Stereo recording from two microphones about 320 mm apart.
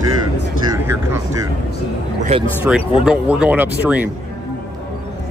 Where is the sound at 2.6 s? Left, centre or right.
Centre.